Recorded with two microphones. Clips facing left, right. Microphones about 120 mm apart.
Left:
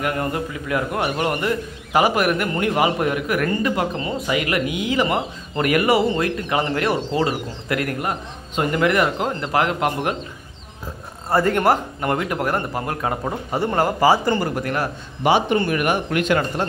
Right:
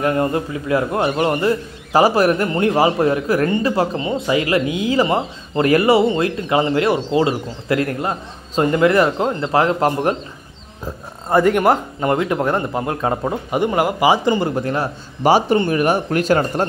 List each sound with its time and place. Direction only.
0.0 s a man's voice: 30° right (ahead or behind)
11.2 s a man's voice: 15° right (ahead or behind)
15.2 s speech: 40° right (ahead or behind)